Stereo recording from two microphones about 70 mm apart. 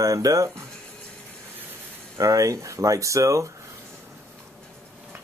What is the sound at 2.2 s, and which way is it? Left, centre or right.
Speech, right.